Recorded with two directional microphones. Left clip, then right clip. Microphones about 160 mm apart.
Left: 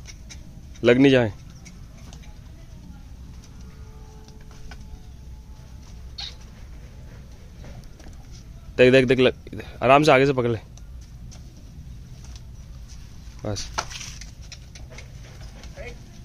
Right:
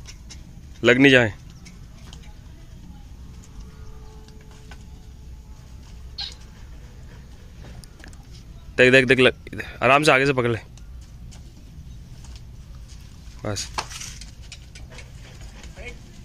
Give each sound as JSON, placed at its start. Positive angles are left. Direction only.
{"t": 0.8, "sound": "speech", "side_deg": 0}
{"t": 8.7, "sound": "speech", "side_deg": 0}
{"t": 13.4, "sound": "speech", "side_deg": 0}